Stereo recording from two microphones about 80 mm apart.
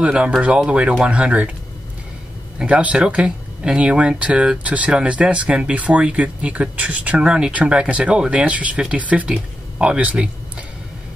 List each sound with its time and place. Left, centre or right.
0.0 s speech: centre
2.6 s speech: centre